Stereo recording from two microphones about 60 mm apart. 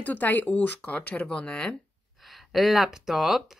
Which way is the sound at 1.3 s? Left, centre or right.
Centre.